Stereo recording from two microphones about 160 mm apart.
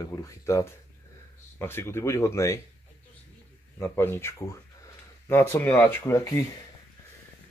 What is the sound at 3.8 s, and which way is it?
Speech, 15° left (ahead or behind).